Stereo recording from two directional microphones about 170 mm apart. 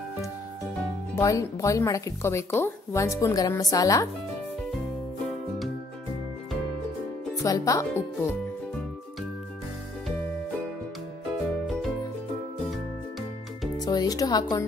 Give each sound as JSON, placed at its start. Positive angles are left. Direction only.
{"t": 1.1, "sound": "speech", "side_deg": 20}
{"t": 7.4, "sound": "speech", "side_deg": 20}
{"t": 13.7, "sound": "speech", "side_deg": 20}